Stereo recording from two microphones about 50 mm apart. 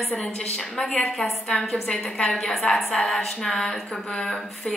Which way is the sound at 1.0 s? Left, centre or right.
Centre.